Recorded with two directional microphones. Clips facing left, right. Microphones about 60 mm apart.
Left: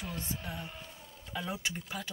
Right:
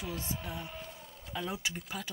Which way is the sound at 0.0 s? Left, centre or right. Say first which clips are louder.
Right 1 dB; centre.